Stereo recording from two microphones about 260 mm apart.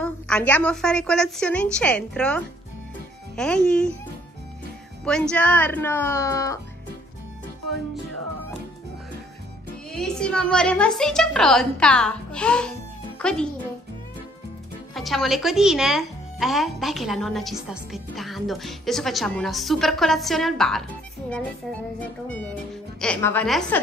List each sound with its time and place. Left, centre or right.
0.0 s speech: centre
5.0 s speech: centre
9.8 s speech: centre
15.0 s speech: centre
22.0 s speech: centre